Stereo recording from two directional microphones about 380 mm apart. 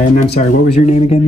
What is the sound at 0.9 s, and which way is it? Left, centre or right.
Speech, centre.